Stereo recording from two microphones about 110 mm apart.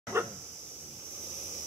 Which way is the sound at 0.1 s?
25° right (ahead or behind).